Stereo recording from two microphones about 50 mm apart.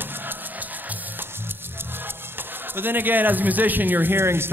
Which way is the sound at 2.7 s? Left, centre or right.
Right.